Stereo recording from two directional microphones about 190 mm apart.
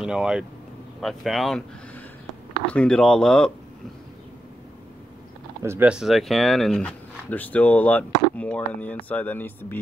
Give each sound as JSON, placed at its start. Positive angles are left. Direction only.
{"t": 0.0, "sound": "speech", "side_deg": -5}
{"t": 2.6, "sound": "speech", "side_deg": 5}
{"t": 5.6, "sound": "speech", "side_deg": -10}